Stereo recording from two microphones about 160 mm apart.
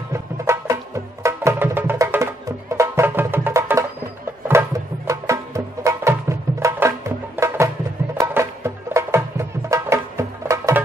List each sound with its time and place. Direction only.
0.1 s music: 20° right (ahead or behind)